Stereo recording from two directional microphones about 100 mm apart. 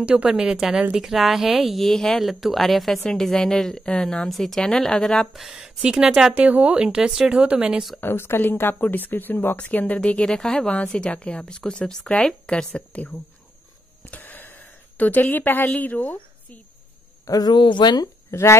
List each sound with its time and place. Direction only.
0.0 s a woman's voice: 10° right (ahead or behind)
8.0 s speech: 25° left (ahead or behind)
17.2 s speech: 40° left (ahead or behind)